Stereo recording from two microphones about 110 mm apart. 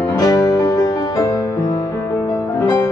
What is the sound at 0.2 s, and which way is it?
Music, 30° left (ahead or behind).